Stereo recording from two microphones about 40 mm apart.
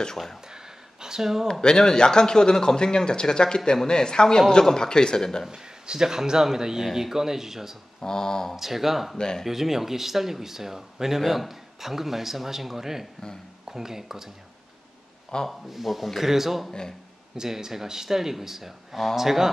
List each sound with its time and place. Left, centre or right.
1.0 s speech: centre
1.5 s speech: centre
5.5 s speech: centre
8.0 s speech: centre
8.5 s speech: centre
15.3 s speech: centre
15.7 s a man's voice: centre